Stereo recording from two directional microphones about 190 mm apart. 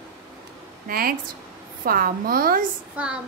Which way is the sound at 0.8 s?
50° right (ahead or behind).